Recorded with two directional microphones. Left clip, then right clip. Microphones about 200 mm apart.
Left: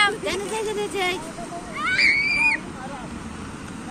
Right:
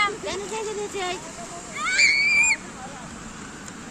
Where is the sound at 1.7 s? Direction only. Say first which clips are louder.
Even; 70° right (ahead or behind).